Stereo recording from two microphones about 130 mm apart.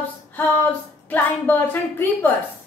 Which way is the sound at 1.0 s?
15° left (ahead or behind).